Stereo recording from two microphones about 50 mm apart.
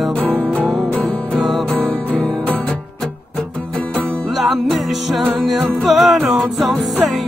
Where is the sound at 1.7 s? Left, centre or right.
Left.